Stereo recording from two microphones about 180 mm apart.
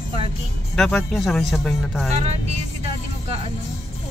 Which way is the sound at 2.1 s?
35° right (ahead or behind).